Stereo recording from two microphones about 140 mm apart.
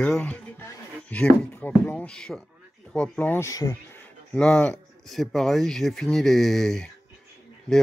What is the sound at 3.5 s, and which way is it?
Speech, 25° left (ahead or behind).